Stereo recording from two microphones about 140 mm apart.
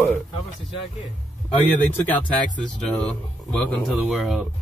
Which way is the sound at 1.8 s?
10° left (ahead or behind).